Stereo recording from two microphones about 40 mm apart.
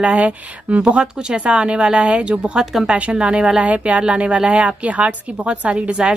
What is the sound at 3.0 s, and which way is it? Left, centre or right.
A woman's voice, right.